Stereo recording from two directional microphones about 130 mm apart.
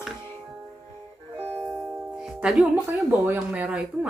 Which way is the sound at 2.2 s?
5° right (ahead or behind).